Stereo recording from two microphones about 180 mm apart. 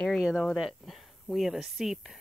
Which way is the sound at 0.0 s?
Centre (ahead or behind).